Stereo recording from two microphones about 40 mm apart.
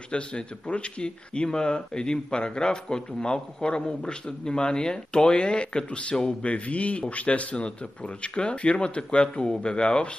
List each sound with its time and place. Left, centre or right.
0.1 s a man's voice: left